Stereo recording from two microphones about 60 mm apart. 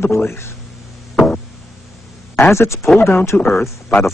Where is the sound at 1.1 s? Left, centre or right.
Centre.